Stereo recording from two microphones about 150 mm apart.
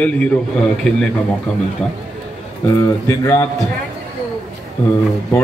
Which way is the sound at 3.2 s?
15° left (ahead or behind).